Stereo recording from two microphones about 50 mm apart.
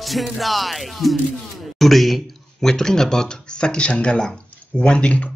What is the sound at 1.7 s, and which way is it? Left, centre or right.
Speech, centre.